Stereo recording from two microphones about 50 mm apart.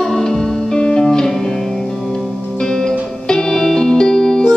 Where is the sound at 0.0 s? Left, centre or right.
Centre.